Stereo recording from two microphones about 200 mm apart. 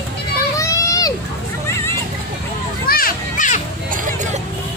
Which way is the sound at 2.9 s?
45° left (ahead or behind).